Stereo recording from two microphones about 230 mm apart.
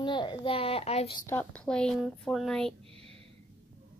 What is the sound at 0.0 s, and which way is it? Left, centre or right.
A child's voice, centre.